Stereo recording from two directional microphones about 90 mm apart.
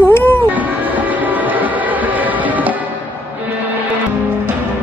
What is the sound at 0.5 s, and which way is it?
Music, 20° right (ahead or behind).